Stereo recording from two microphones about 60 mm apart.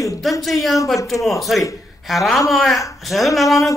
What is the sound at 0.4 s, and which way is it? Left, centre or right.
Speech, centre.